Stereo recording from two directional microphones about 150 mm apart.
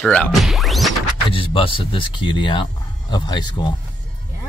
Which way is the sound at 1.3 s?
35° left (ahead or behind).